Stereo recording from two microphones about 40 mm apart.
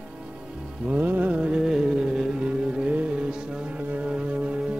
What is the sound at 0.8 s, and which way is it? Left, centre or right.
Music, right.